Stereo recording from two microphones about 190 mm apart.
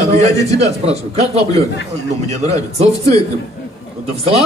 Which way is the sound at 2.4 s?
35° right (ahead or behind).